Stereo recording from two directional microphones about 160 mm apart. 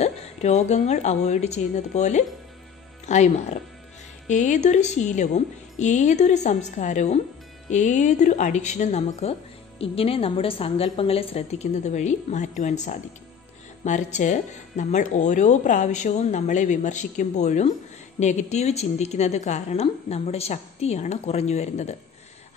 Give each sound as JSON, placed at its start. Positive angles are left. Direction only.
{"t": 0.0, "sound": "a woman's voice", "side_deg": 45}